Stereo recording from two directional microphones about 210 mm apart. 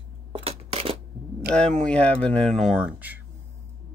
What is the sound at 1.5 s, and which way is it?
Speech, 5° left (ahead or behind).